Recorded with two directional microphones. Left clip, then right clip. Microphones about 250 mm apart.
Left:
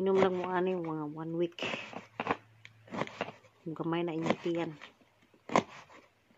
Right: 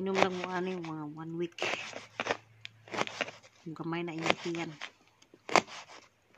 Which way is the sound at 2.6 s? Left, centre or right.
Centre.